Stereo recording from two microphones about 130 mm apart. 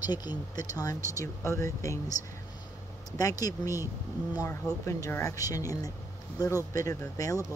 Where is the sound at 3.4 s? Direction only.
25° left (ahead or behind).